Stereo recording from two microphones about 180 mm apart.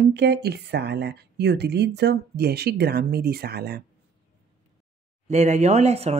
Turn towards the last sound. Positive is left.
turn(degrees=-35)  # may be behind; listen again after turning